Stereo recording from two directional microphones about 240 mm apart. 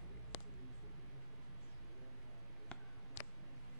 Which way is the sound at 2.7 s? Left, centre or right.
Centre.